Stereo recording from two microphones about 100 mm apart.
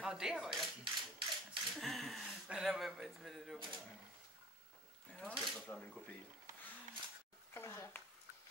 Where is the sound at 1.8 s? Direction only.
Centre (ahead or behind).